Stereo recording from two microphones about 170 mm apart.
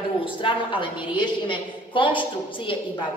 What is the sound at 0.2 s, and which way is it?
A woman's voice, 30° left (ahead or behind).